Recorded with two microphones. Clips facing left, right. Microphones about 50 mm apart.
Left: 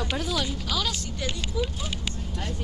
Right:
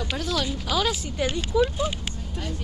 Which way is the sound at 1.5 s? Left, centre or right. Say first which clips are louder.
Right 9 dB; right.